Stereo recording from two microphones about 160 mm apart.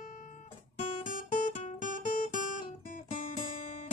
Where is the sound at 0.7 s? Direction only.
55° left (ahead or behind).